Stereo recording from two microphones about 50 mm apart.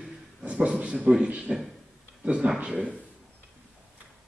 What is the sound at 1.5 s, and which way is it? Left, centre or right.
A man's voice, centre.